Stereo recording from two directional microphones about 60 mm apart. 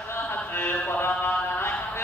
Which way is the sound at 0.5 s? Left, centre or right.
Left.